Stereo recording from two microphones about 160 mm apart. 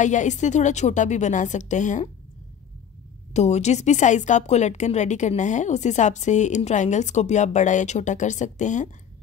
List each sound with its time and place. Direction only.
0.0 s a woman's voice: 50° left (ahead or behind)
3.3 s a woman's voice: 45° left (ahead or behind)